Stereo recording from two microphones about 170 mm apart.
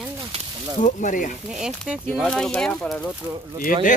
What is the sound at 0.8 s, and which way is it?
Speech, 50° left (ahead or behind).